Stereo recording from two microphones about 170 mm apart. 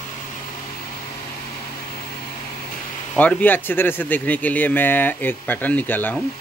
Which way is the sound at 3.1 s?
5° left (ahead or behind).